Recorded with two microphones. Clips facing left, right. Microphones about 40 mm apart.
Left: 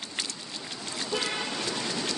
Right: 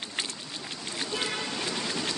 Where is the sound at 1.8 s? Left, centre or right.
Centre.